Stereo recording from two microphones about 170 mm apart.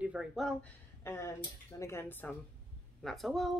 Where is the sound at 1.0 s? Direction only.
15° left (ahead or behind).